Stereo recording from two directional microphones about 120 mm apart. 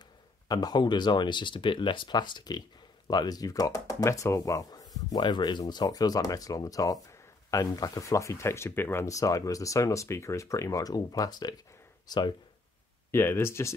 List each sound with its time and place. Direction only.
0.5 s speech: 35° left (ahead or behind)
13.1 s speech: 20° left (ahead or behind)